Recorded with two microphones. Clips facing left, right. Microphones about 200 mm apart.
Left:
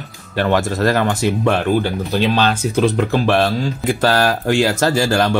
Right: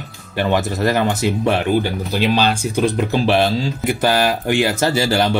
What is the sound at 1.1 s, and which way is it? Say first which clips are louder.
Speech: left 1 dB; 20° right (ahead or behind).